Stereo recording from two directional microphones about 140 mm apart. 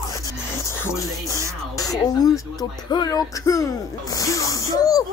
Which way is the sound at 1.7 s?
25° left (ahead or behind).